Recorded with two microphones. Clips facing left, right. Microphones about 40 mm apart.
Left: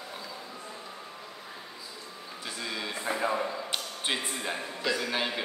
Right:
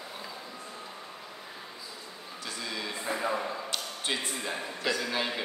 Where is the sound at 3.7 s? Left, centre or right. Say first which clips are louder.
Left 1 dB; left.